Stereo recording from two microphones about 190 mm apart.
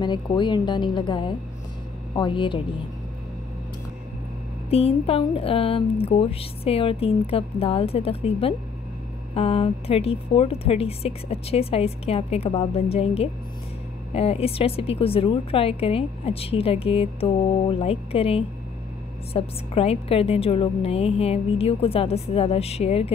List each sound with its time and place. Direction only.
0.0 s a woman's voice: 25° left (ahead or behind)
4.6 s a woman's voice: 30° left (ahead or behind)